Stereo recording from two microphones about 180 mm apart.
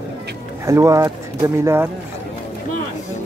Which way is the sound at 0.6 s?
15° right (ahead or behind).